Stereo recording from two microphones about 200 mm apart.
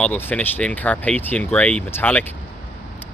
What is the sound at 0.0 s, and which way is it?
Speech, 10° left (ahead or behind).